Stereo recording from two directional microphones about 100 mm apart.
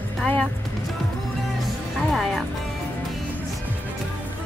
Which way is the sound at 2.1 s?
5° left (ahead or behind).